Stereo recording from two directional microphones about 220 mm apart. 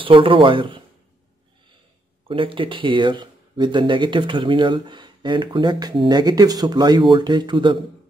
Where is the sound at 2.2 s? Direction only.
25° right (ahead or behind).